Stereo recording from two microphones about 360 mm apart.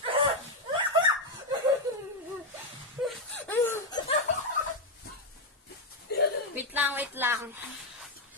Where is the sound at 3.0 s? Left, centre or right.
Centre.